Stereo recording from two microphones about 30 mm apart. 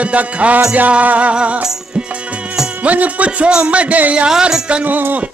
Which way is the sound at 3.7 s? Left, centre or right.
Right.